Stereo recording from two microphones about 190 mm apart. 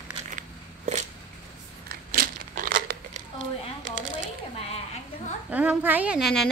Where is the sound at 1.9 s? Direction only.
50° right (ahead or behind).